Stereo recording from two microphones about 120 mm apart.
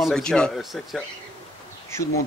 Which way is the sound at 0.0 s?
5° left (ahead or behind).